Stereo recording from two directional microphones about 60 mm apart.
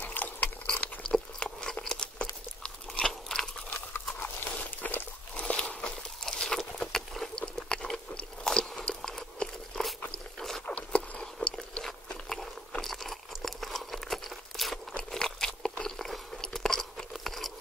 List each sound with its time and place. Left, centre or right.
0.0 s biting: left
1.0 s a sound: centre
2.6 s crunch: centre
3.7 s horse: left
5.4 s a sound: centre
6.8 s crunch: centre
10.1 s boat: centre
10.7 s biting: left
11.5 s crunch: centre
15.0 s biting: centre
15.8 s chewing: centre
17.2 s a sound: centre